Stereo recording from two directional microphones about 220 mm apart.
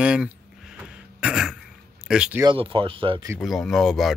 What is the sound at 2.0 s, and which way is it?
Speech, 5° right (ahead or behind).